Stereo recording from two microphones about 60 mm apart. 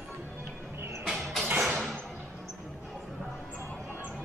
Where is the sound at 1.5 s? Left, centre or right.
Right.